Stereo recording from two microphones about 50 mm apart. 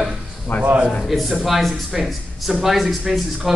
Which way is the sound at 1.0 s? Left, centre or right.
Centre.